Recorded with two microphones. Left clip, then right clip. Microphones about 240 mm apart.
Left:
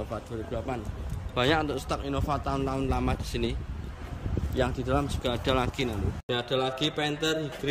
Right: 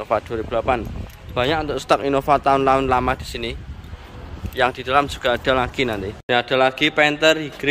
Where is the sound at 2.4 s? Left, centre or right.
Right.